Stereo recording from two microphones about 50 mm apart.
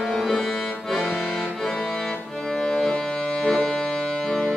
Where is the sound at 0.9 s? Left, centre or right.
Centre.